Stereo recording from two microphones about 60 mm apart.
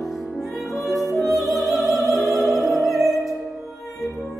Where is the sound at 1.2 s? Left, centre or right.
Centre.